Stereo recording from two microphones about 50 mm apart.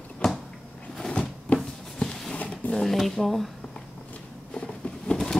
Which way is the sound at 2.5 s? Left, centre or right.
Centre.